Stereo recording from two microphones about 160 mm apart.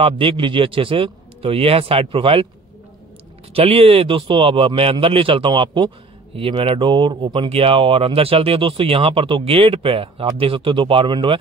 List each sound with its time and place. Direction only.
0.0 s speech: 35° right (ahead or behind)
3.5 s speech: 35° right (ahead or behind)